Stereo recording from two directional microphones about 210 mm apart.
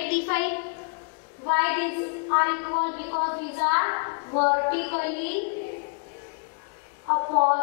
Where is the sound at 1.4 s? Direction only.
15° left (ahead or behind).